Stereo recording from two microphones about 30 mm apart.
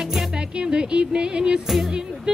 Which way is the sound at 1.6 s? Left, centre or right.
Centre.